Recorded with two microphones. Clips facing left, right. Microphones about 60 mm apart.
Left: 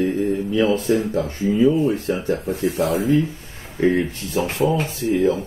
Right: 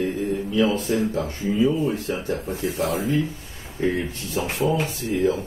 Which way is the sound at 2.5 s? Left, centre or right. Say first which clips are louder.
Left 4 dB; left.